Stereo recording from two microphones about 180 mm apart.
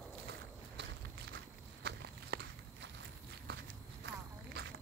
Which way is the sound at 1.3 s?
75° right (ahead or behind).